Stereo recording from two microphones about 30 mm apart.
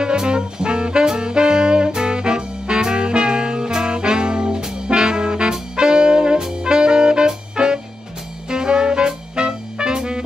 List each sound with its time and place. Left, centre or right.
0.0 s music: right
1.0 s saxophone: right
2.0 s music: right